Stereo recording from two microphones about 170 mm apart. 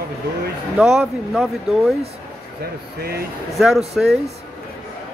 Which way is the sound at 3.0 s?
65° right (ahead or behind).